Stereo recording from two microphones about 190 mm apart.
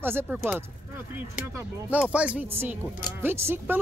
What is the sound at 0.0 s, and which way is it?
Speech, 10° right (ahead or behind).